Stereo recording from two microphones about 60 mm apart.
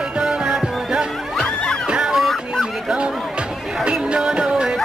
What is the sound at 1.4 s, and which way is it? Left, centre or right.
Music, centre.